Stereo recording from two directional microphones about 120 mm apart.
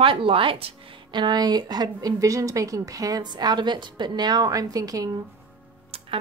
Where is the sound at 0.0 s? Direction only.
45° right (ahead or behind); by 5.1 s 30° right (ahead or behind).